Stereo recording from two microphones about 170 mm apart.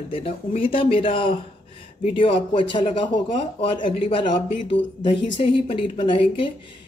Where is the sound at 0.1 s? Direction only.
35° left (ahead or behind).